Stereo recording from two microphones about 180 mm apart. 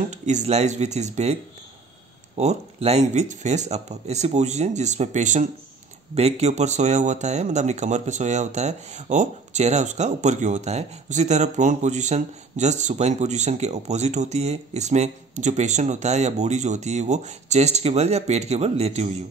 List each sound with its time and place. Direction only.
0.1 s a man's voice: 40° right (ahead or behind)